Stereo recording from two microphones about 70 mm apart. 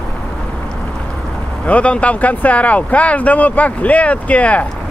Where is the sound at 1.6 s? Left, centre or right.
Centre.